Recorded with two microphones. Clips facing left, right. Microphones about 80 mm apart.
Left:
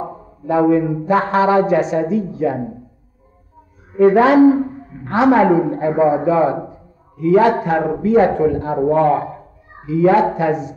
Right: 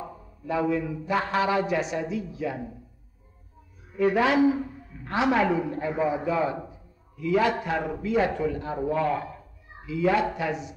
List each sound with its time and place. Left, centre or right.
0.0 s a man's voice: left
3.9 s a woman's voice: left